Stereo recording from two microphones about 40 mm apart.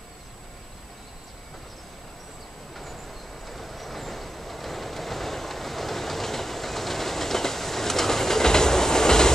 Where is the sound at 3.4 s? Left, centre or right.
Centre.